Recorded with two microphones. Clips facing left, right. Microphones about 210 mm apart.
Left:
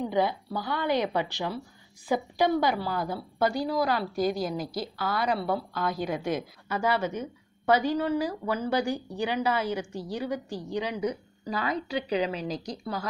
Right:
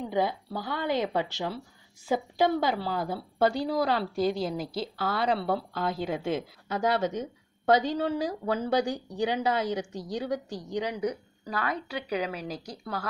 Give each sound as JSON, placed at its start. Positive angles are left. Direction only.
{"t": 0.3, "sound": "a woman's voice", "side_deg": -20}
{"t": 11.4, "sound": "speech", "side_deg": 0}